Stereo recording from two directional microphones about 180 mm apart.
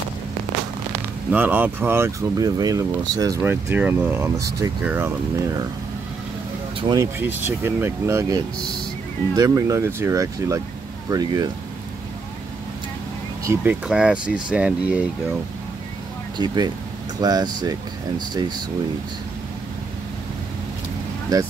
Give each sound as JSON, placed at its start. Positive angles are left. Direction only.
{"t": 1.3, "sound": "speech", "side_deg": -10}
{"t": 6.8, "sound": "speech", "side_deg": -20}
{"t": 13.4, "sound": "speech", "side_deg": -15}
{"t": 16.3, "sound": "speech", "side_deg": -25}
{"t": 21.3, "sound": "speech", "side_deg": -20}